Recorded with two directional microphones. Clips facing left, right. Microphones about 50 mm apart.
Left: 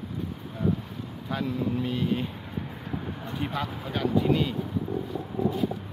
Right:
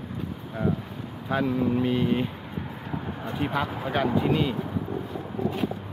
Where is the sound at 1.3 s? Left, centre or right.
Right.